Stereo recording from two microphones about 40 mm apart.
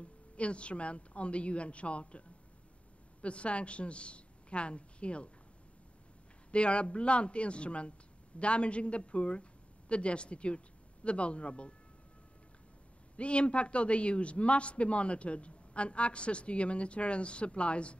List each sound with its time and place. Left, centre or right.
0.0 s a woman's voice: left
6.5 s a man's voice: left
13.1 s a man's voice: left